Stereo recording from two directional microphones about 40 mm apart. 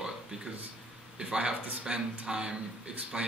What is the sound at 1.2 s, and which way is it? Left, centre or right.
Speech, right.